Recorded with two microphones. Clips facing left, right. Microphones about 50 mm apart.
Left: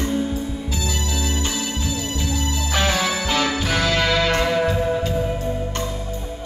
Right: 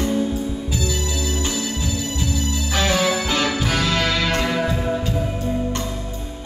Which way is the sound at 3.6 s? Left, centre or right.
Centre.